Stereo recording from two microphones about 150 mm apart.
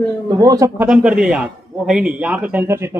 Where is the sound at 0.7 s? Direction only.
5° right (ahead or behind).